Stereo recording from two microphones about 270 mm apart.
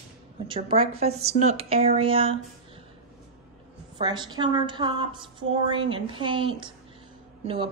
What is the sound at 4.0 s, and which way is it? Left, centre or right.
A woman's voice, centre.